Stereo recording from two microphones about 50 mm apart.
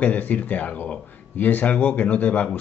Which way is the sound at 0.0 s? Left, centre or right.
Left.